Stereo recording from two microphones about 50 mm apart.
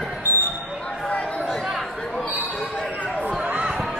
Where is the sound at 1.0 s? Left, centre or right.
Left.